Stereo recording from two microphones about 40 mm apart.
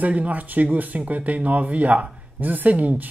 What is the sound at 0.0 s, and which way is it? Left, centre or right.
Speech, right.